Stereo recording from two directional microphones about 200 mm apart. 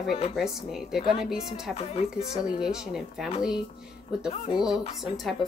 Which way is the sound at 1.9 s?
30° left (ahead or behind).